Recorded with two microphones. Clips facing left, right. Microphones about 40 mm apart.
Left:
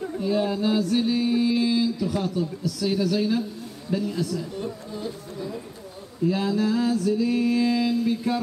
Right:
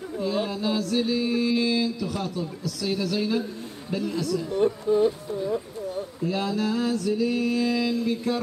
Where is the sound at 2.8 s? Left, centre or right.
Centre.